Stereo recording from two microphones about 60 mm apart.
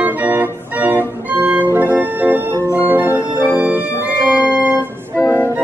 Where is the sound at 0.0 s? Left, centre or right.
Right.